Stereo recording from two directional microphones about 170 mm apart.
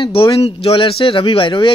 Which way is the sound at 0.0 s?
30° left (ahead or behind).